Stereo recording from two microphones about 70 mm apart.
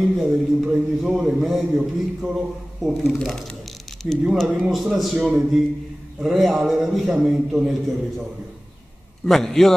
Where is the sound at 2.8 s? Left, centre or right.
Centre.